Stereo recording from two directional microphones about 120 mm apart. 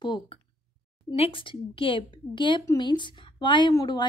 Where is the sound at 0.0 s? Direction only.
40° left (ahead or behind).